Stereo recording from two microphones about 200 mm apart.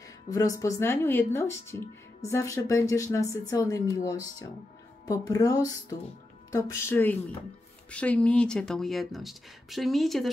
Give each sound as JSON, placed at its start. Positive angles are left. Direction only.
{"t": 0.3, "sound": "speech", "side_deg": 15}
{"t": 5.0, "sound": "speech", "side_deg": 15}